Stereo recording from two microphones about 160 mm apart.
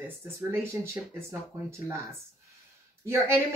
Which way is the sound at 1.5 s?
20° right (ahead or behind).